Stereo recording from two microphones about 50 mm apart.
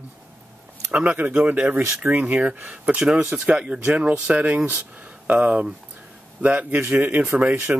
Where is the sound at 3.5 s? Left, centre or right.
Centre.